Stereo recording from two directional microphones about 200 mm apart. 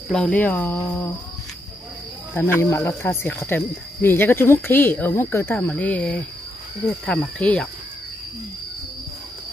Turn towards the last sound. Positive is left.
turn(degrees=5)  # may be behind; listen again after turning